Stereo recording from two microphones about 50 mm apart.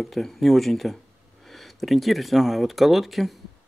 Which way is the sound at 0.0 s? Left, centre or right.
Centre.